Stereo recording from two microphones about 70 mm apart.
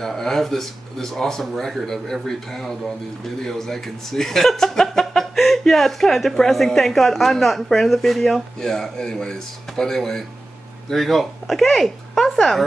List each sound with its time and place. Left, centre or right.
0.0 s speech: centre